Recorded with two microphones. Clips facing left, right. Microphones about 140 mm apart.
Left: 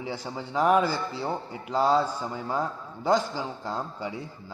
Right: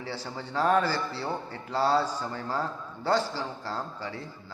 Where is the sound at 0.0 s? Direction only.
15° left (ahead or behind).